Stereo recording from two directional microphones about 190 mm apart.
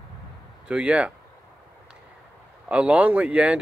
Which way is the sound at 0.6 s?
5° right (ahead or behind).